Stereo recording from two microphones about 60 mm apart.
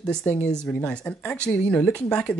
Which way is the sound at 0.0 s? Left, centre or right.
Centre.